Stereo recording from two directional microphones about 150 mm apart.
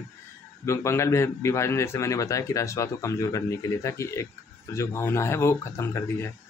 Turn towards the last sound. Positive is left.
turn(degrees=15)  # may be behind; listen again after turning